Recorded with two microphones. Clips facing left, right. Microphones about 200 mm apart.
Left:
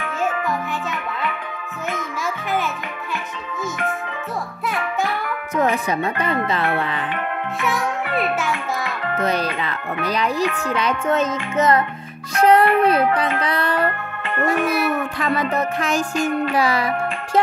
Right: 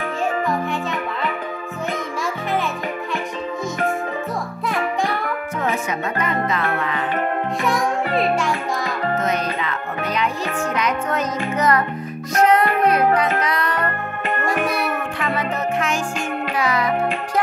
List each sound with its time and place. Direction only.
5.6 s speech: 30° left (ahead or behind)
6.5 s music: 30° left (ahead or behind)
8.1 s a child's voice: 30° right (ahead or behind)
8.5 s music: 35° right (ahead or behind)
9.2 s music: 35° left (ahead or behind)
15.1 s music: 35° left (ahead or behind)